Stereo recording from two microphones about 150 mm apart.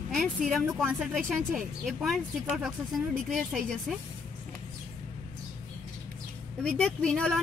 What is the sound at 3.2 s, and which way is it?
Speech, centre (ahead or behind).